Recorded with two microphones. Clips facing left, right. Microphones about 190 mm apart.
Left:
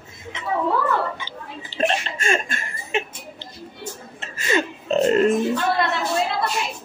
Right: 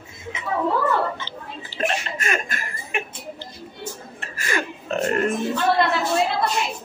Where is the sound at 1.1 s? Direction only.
15° left (ahead or behind).